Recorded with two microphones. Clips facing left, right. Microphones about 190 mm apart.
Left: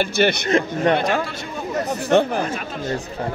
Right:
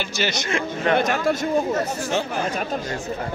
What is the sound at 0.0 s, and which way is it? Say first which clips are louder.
Speech: left 7 dB; 60° left (ahead or behind).